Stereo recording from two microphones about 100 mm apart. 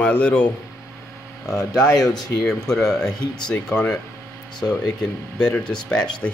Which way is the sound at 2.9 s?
5° left (ahead or behind).